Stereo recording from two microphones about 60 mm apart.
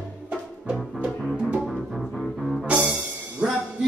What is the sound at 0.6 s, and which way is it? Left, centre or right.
Music, centre.